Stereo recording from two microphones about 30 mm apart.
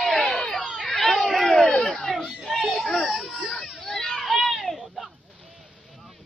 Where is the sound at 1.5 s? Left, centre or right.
Left.